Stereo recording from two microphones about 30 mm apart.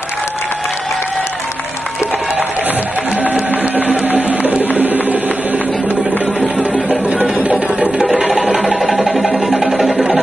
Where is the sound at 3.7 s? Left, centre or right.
Right.